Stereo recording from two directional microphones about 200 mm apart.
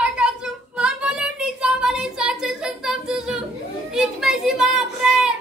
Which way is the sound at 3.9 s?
Centre (ahead or behind).